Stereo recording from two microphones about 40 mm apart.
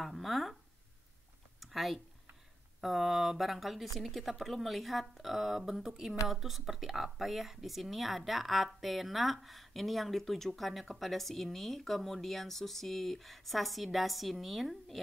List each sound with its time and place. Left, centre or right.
0.0 s speech: centre
1.6 s a sound: centre
2.8 s speech: centre